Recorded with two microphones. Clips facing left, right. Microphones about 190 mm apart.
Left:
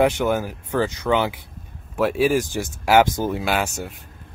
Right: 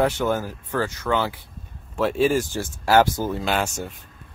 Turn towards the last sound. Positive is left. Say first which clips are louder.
# left 1 dB
turn(degrees=10)  # may be behind; listen again after turning